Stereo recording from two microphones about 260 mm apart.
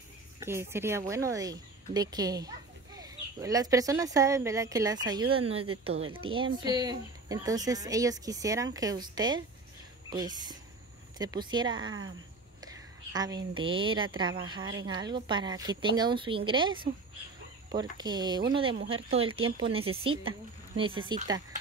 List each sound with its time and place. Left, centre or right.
0.4 s a woman's voice: centre
13.1 s a woman's voice: centre